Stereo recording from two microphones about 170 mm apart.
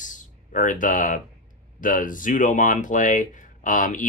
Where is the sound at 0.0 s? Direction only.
50° left (ahead or behind).